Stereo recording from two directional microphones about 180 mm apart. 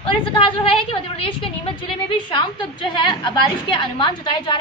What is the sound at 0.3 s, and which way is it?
Speech, 30° left (ahead or behind).